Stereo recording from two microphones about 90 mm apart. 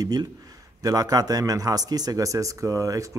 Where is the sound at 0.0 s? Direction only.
45° right (ahead or behind).